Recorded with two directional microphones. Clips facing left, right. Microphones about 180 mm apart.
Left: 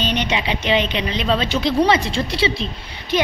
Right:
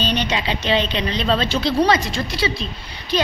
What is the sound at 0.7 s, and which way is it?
A woman's voice, 15° left (ahead or behind).